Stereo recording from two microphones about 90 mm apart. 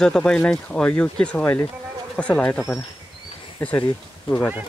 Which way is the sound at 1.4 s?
25° left (ahead or behind).